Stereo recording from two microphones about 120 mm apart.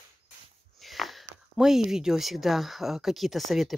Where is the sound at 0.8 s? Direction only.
Centre (ahead or behind).